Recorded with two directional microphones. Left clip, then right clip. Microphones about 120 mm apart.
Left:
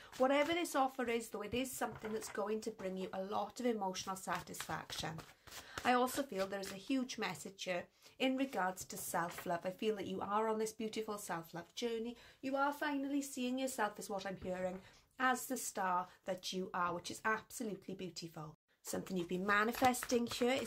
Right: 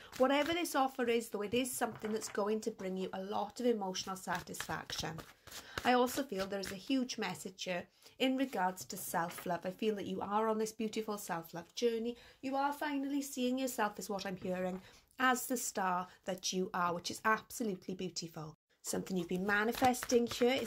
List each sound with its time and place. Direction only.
0.2 s speech: 30° right (ahead or behind)
2.8 s speech: 20° right (ahead or behind)
4.3 s speech: 20° right (ahead or behind)
19.1 s speech: 10° right (ahead or behind)